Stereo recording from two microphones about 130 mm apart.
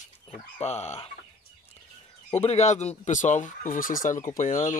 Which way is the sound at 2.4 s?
60° left (ahead or behind).